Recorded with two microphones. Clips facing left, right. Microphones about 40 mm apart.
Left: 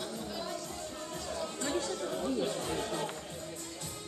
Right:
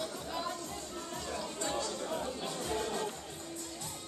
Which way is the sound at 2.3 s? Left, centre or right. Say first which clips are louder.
Left 3 dB; centre.